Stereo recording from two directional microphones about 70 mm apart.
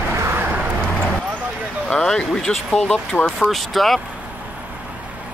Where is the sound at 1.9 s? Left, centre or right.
Centre.